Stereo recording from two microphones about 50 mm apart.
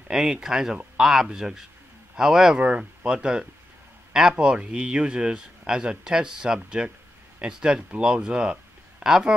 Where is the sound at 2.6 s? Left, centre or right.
Right.